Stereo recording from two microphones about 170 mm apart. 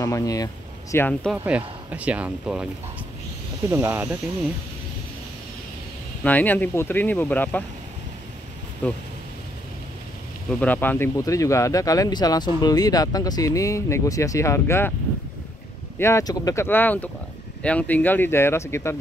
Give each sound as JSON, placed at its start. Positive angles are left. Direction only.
{"t": 0.0, "sound": "speech", "side_deg": 20}
{"t": 1.3, "sound": "speech", "side_deg": -10}
{"t": 6.2, "sound": "speech", "side_deg": 10}
{"t": 8.8, "sound": "speech", "side_deg": 5}
{"t": 10.5, "sound": "speech", "side_deg": 10}
{"t": 16.0, "sound": "speech", "side_deg": 15}